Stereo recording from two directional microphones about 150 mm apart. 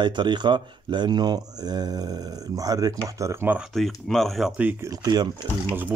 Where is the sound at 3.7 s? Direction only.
Centre (ahead or behind).